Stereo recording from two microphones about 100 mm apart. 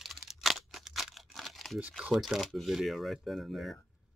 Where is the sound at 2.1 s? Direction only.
Centre (ahead or behind).